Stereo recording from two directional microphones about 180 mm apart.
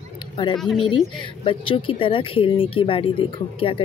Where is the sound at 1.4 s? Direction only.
30° left (ahead or behind).